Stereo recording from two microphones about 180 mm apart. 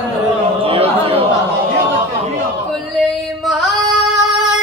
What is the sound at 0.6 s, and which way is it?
Speech, 30° right (ahead or behind).